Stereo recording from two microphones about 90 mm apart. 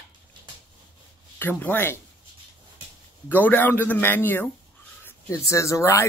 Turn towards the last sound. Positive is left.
turn(degrees=35)  # may be behind; listen again after turning